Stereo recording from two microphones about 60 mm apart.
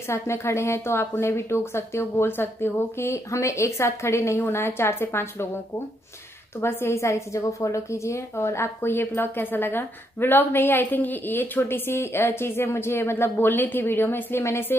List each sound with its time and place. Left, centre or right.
0.1 s a woman's voice: left
3.3 s a woman's voice: left
6.6 s a woman's voice: left
8.5 s a woman's voice: left